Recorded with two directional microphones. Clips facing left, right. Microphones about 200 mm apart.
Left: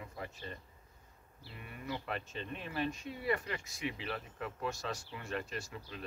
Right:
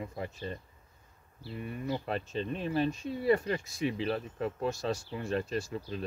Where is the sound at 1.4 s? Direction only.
35° right (ahead or behind).